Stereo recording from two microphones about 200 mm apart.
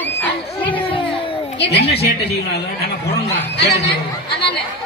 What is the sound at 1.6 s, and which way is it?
A woman's voice, 55° left (ahead or behind).